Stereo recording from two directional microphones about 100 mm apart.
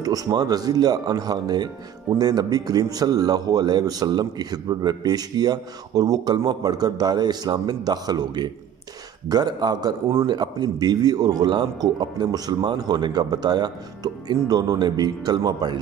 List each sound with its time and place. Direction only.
0.0 s a man's voice: 35° right (ahead or behind)